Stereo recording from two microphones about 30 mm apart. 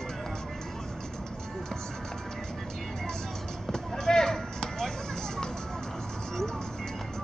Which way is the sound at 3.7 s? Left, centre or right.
Centre.